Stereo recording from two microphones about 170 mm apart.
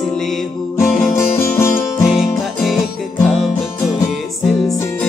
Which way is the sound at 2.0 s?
Centre (ahead or behind).